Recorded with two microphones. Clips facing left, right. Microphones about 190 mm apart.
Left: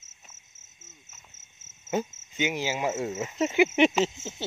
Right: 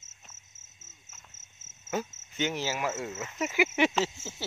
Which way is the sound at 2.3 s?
15° left (ahead or behind).